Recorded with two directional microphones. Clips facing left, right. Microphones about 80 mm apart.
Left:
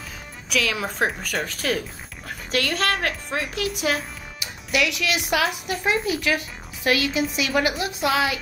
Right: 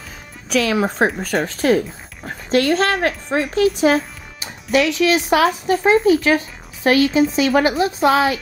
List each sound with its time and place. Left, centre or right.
0.5 s a woman's voice: right